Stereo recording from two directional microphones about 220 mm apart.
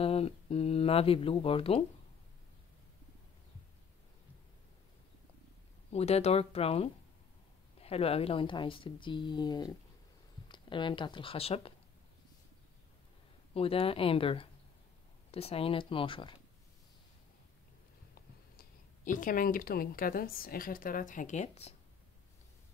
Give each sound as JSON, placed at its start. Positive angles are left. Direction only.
{"t": 0.0, "sound": "speech", "side_deg": 25}
{"t": 5.9, "sound": "speech", "side_deg": 30}
{"t": 13.5, "sound": "speech", "side_deg": 25}
{"t": 18.6, "sound": "speech", "side_deg": 40}